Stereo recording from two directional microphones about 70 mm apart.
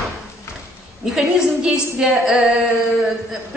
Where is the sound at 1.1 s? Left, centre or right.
Centre.